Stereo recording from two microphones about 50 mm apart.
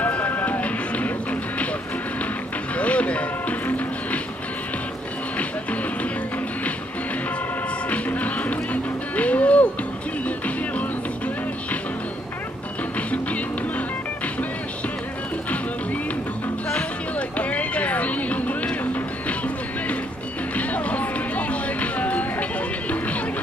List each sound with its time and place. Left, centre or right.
0.0 s music: left
2.8 s music: left
7.9 s music: left
17.4 s music: left
20.5 s music: left